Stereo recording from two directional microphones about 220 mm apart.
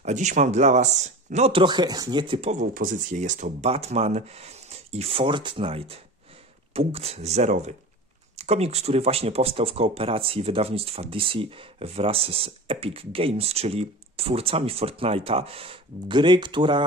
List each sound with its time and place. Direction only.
0.0 s speech: 30° right (ahead or behind)